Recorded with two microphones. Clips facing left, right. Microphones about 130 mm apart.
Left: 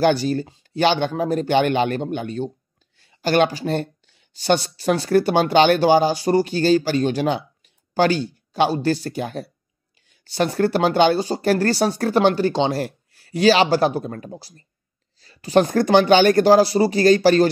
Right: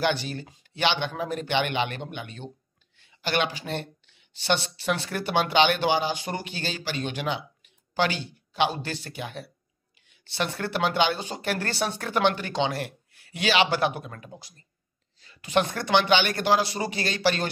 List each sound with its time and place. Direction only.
0.0 s speech: 40° left (ahead or behind)